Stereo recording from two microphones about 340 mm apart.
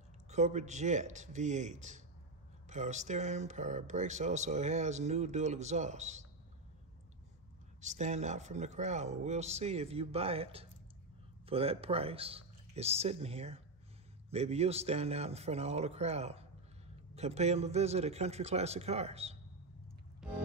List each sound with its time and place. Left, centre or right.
0.3 s speech: right
7.8 s speech: right
20.2 s music: centre